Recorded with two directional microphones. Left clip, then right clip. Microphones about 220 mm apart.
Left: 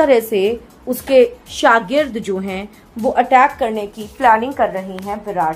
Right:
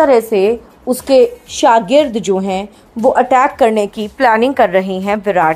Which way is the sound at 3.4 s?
45° right (ahead or behind).